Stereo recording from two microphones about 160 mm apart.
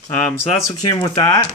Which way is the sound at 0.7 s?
25° left (ahead or behind).